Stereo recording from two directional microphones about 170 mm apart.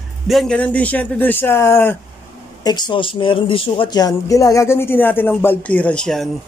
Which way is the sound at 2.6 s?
25° left (ahead or behind).